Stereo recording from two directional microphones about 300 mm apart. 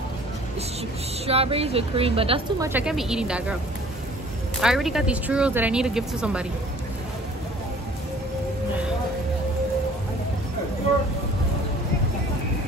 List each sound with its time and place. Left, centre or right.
1.2 s a woman's voice: centre
2.7 s speech: centre
4.6 s speech: centre